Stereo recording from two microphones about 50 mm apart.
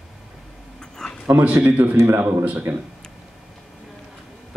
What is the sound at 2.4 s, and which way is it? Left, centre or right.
Speech, right.